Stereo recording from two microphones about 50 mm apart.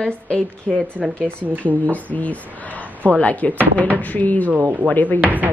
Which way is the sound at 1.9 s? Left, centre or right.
Left.